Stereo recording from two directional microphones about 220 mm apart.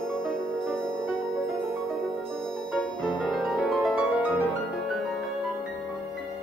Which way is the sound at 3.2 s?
Centre (ahead or behind).